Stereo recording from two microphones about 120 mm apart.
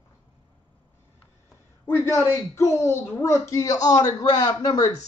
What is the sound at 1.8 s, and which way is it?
A man's voice, 20° left (ahead or behind).